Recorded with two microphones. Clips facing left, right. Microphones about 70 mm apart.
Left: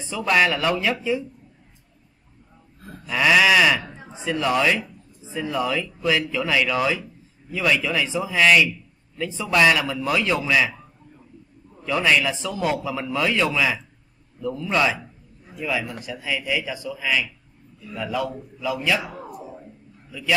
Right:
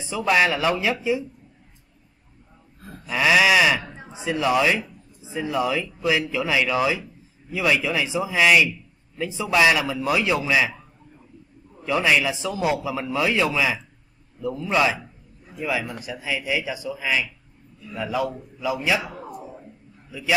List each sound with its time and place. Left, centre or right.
0.1 s a man's voice: centre
3.1 s a man's voice: centre
11.8 s a man's voice: centre